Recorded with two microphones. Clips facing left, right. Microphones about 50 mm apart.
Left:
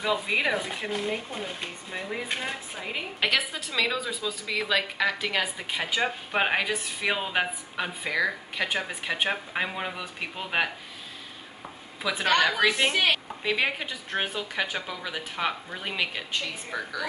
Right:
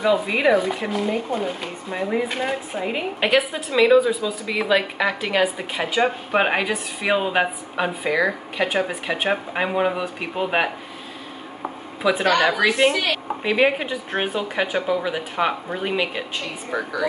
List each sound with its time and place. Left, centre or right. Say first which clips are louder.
0.0 s a woman's voice: right 7 dB; centre
2.7 s a woman's voice: right 9 dB; centre
12.0 s speech: right 9 dB; centre
13.4 s a woman's voice: right 8 dB; centre